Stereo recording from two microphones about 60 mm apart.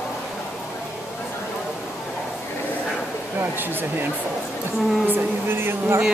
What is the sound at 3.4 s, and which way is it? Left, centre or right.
Speech, right.